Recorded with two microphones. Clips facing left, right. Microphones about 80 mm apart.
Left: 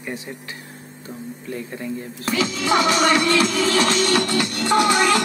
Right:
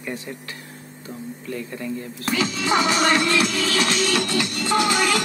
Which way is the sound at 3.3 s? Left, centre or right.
Left.